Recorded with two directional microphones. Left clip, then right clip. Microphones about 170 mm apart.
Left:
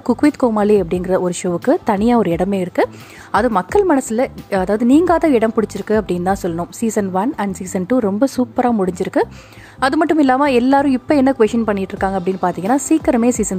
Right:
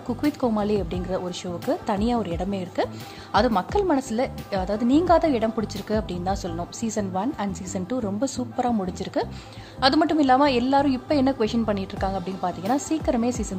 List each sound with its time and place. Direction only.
0.0 s speech: 45° left (ahead or behind)